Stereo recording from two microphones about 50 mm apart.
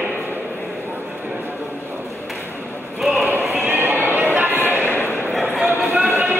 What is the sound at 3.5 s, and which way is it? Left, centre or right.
Music, right.